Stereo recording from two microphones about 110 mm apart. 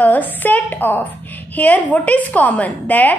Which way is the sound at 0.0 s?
15° left (ahead or behind).